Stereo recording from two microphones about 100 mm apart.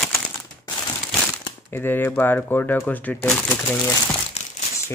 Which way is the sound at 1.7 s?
20° left (ahead or behind).